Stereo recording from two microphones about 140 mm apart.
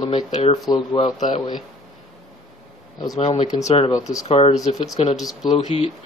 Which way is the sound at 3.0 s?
30° left (ahead or behind).